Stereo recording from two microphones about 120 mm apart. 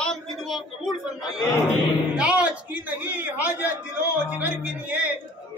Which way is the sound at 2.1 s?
10° right (ahead or behind).